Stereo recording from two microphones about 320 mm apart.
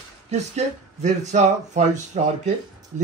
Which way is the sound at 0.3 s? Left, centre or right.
Right.